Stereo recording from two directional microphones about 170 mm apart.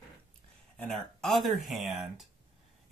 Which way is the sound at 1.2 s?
Centre (ahead or behind).